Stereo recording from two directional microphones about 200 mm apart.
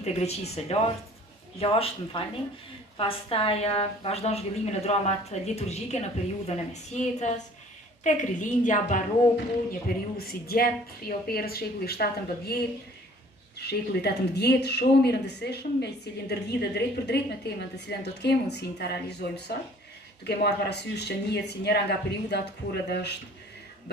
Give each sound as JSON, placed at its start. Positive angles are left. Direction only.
{"t": 0.0, "sound": "a woman's voice", "side_deg": 35}